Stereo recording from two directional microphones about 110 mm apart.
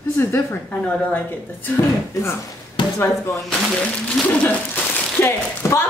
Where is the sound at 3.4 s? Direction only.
5° left (ahead or behind).